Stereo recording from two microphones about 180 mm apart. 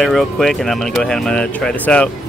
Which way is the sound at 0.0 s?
Centre (ahead or behind).